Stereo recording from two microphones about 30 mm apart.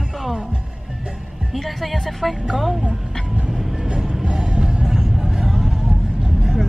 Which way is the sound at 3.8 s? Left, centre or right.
Right.